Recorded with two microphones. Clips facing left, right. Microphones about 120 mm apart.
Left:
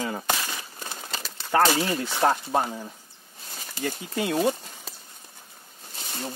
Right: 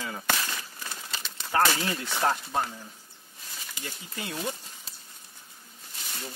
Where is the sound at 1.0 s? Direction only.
40° left (ahead or behind).